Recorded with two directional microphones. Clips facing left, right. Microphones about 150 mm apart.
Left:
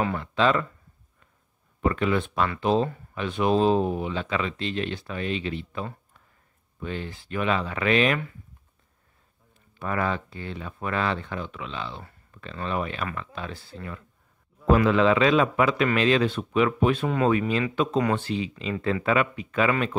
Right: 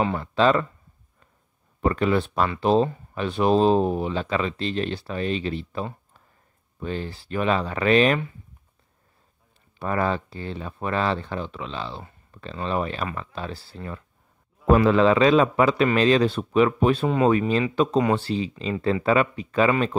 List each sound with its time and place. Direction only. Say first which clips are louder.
0.0 s speech: right 3 dB; 30° right (ahead or behind)
1.8 s speech: right 2 dB; 35° right (ahead or behind)
9.8 s speech: right 3 dB; 35° right (ahead or behind)
12.0 s a sound: right 3 dB; 20° right (ahead or behind)
12.4 s speech: right 3 dB; 30° right (ahead or behind)